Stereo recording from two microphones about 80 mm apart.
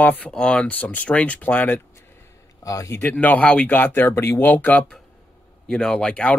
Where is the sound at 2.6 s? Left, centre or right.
Left.